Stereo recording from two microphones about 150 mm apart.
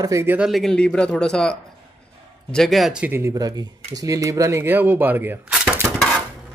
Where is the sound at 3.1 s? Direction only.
20° right (ahead or behind).